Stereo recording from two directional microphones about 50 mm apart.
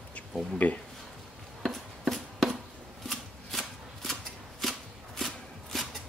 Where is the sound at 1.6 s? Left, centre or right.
Centre.